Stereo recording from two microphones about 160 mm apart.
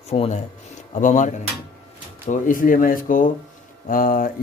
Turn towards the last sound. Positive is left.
turn(degrees=60)  # may be behind; listen again after turning